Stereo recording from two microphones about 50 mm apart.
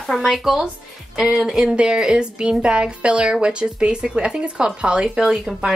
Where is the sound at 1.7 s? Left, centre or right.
Centre.